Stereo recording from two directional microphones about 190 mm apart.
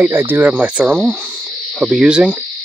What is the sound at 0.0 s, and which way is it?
Cricket, 10° right (ahead or behind).